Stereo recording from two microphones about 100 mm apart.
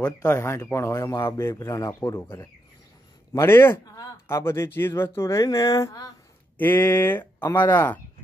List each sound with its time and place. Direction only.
0.2 s speech: 25° left (ahead or behind)
6.6 s speech: 20° left (ahead or behind)